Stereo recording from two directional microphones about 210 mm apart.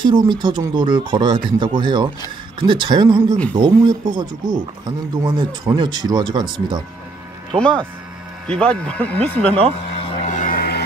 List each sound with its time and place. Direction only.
0.0 s speech: 20° right (ahead or behind)
7.5 s speech: 5° left (ahead or behind)
9.9 s vehicle: 30° left (ahead or behind)